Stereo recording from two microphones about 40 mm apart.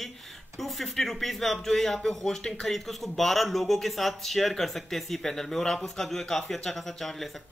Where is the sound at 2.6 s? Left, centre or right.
Centre.